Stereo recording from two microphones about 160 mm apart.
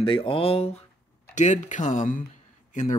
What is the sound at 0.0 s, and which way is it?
Speech, 35° left (ahead or behind).